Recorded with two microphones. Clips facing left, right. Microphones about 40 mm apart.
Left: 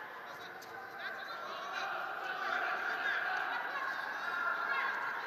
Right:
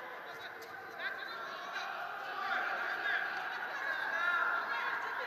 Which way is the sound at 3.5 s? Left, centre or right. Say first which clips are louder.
Left 2 dB; centre.